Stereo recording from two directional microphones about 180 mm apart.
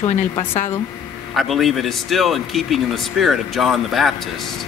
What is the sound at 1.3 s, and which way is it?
Speech, centre (ahead or behind).